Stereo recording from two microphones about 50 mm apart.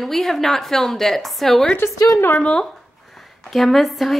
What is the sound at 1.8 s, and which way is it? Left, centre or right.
Speech, left.